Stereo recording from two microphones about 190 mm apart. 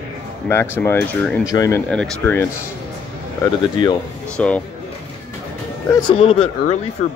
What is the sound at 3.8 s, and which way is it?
Speech, 40° right (ahead or behind).